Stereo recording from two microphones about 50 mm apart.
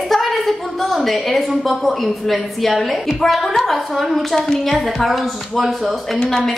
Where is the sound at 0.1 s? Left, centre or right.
Centre.